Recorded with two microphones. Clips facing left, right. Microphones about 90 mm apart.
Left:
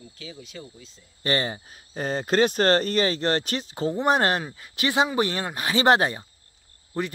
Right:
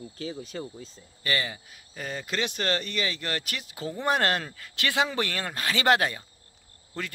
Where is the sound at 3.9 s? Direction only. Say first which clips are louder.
Left 3 dB; 20° left (ahead or behind).